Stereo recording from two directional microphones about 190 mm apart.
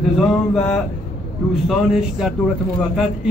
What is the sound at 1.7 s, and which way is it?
Speech, centre (ahead or behind).